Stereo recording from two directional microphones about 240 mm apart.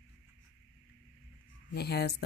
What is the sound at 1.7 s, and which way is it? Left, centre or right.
Speech, left.